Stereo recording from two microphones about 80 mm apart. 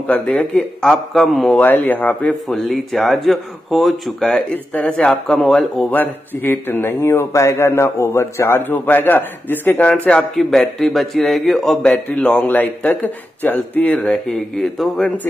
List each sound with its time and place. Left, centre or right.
0.3 s speech: centre
1.5 s speech: left
2.4 s speech: centre
4.7 s a man's voice: centre
5.9 s speech: left
10.3 s a man's voice: centre
12.4 s speech: left
13.9 s speech: centre